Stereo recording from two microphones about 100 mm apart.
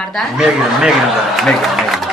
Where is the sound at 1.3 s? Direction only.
Centre (ahead or behind).